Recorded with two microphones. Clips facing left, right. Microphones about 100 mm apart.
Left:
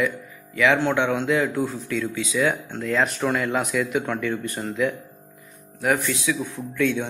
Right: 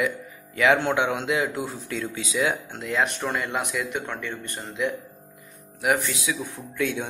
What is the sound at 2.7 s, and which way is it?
Speech, 15° right (ahead or behind).